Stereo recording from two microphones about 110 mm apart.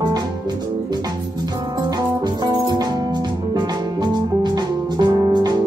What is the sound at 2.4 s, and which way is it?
Music, 35° right (ahead or behind).